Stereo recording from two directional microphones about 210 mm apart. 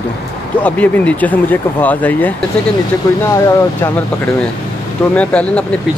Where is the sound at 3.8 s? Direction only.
10° left (ahead or behind).